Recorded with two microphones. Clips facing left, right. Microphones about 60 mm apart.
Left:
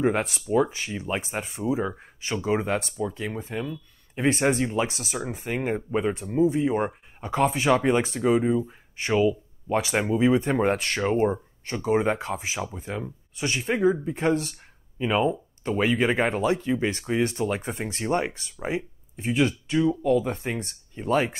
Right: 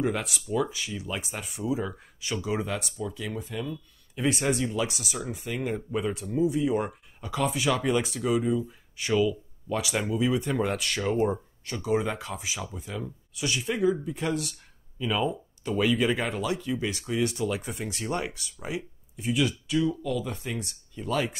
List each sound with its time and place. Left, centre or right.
0.0 s speech: left